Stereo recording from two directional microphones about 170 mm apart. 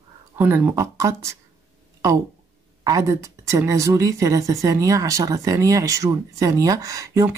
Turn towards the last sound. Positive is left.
turn(degrees=-20)  # may be behind; listen again after turning